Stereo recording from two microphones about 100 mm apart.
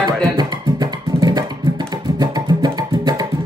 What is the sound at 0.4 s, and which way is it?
Music, 45° right (ahead or behind).